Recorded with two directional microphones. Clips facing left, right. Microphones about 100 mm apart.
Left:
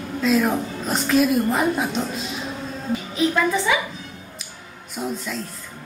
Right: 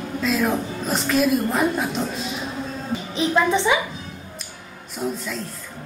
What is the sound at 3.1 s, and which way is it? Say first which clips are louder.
Speech: right 1 dB; 25° right (ahead or behind).